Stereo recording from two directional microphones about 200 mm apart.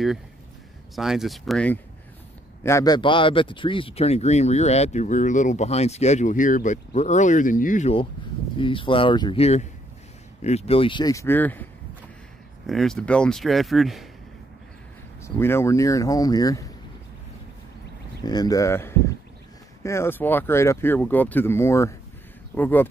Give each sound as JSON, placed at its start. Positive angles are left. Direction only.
{"t": 0.9, "sound": "speech", "side_deg": 0}
{"t": 2.6, "sound": "speech", "side_deg": 15}
{"t": 12.6, "sound": "speech", "side_deg": 0}
{"t": 15.2, "sound": "speech", "side_deg": 10}
{"t": 18.2, "sound": "speech", "side_deg": 20}